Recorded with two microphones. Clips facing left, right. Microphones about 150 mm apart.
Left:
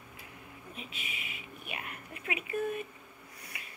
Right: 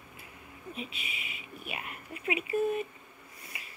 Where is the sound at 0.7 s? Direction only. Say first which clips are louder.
Right 4 dB; 45° left (ahead or behind).